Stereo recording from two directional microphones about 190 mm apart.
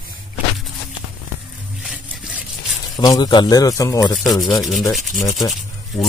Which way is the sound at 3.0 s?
20° left (ahead or behind).